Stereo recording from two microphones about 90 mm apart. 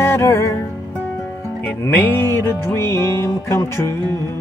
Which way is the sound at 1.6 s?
20° left (ahead or behind).